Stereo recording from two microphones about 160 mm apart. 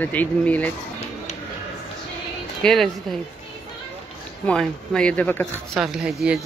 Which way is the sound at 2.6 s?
5° left (ahead or behind).